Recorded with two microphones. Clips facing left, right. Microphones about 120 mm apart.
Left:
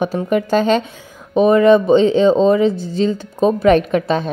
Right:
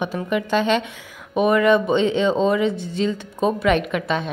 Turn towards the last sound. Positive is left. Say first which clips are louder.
# left 6 dB
turn(degrees=35)  # may be behind; listen again after turning